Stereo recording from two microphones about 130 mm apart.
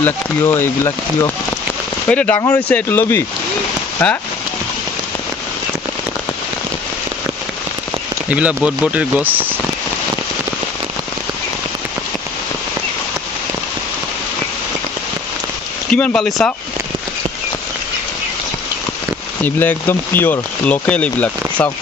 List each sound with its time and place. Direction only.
0.0 s speech: 20° left (ahead or behind)
8.3 s speech: 10° right (ahead or behind)
15.9 s speech: 10° left (ahead or behind)
19.4 s speech: 15° left (ahead or behind)